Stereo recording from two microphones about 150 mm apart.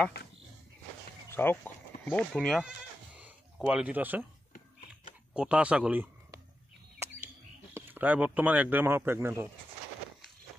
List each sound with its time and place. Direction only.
1.3 s a sound: 15° left (ahead or behind)
2.3 s speech: centre (ahead or behind)
5.3 s speech: 5° right (ahead or behind)
7.7 s speech: 10° right (ahead or behind)